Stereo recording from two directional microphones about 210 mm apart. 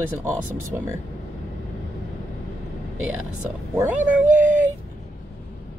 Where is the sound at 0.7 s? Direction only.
10° right (ahead or behind).